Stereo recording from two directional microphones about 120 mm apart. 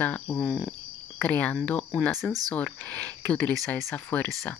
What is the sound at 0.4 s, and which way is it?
Cricket, centre (ahead or behind).